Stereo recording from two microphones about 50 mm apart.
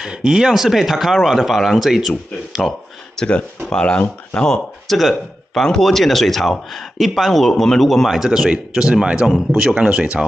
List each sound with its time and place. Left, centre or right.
0.0 s speech: centre
3.2 s speech: centre
4.8 s speech: centre
8.1 s speech: centre